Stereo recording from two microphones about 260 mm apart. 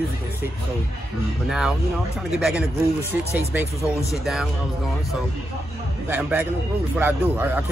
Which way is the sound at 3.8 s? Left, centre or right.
Centre.